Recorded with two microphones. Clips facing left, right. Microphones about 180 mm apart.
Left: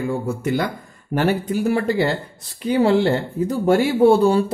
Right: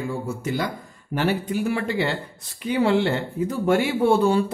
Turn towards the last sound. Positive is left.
turn(degrees=35)  # may be behind; listen again after turning